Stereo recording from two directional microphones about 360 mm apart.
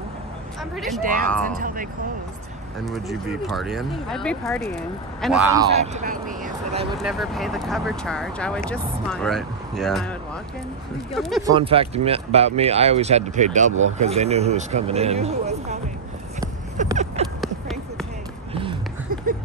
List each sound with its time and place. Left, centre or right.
0.7 s speech: centre
1.0 s speech: right
2.8 s speech: centre
7.0 s speech: centre
11.1 s speech: centre
11.5 s speech: centre
17.4 s a sound: centre
18.5 s run: centre